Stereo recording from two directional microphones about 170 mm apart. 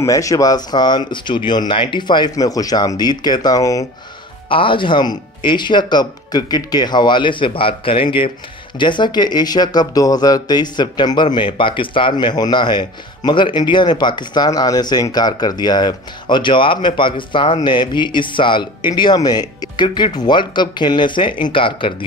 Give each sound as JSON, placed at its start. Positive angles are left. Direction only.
{"t": 0.0, "sound": "speech", "side_deg": 20}